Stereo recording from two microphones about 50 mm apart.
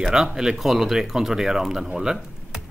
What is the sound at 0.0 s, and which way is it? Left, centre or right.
Speech, centre.